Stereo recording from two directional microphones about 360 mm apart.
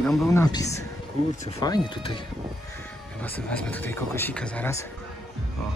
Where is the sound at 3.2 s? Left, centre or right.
Centre.